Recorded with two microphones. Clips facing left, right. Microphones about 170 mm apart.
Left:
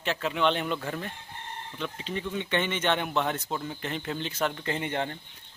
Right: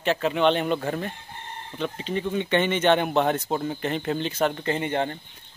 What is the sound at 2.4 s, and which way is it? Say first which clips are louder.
Speech: right 6 dB; 60° right (ahead or behind).